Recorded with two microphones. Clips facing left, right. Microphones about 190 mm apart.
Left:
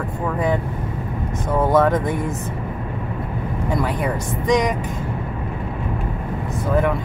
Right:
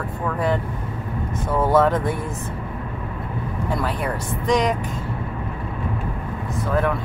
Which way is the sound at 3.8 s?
10° left (ahead or behind).